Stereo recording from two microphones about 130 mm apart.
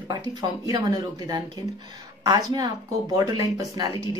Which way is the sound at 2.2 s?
30° right (ahead or behind).